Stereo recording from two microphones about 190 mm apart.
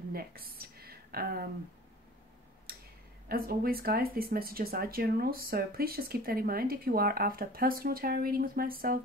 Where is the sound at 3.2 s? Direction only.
50° right (ahead or behind).